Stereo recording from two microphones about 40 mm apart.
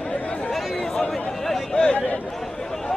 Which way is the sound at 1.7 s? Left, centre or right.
Left.